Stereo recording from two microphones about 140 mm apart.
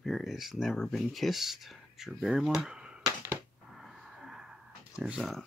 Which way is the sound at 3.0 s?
20° right (ahead or behind).